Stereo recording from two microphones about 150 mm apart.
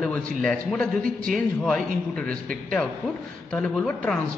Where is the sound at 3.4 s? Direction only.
5° left (ahead or behind).